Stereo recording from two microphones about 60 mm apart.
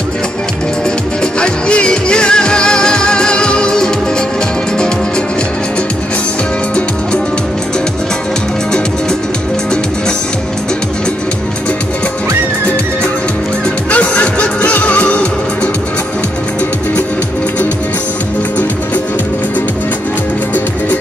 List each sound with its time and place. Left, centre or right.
1.4 s music: centre
13.8 s music: left